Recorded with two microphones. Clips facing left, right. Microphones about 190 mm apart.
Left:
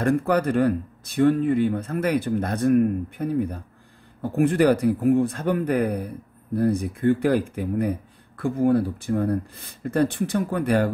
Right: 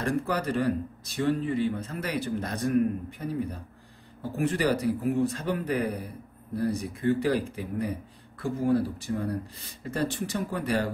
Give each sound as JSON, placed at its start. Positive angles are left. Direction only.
{"t": 0.0, "sound": "a man's voice", "side_deg": 55}